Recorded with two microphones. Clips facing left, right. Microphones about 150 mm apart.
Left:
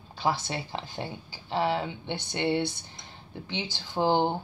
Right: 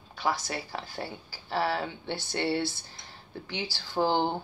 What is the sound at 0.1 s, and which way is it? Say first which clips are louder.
Speech: left 2 dB; 30° left (ahead or behind).